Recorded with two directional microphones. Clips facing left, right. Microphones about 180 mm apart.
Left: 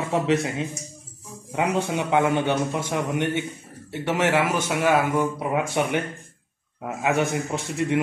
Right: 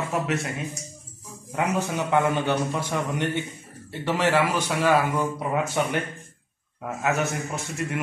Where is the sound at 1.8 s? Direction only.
20° left (ahead or behind).